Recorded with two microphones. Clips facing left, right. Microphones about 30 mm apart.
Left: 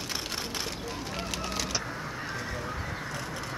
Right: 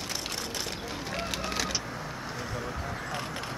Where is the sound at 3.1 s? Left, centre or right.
Right.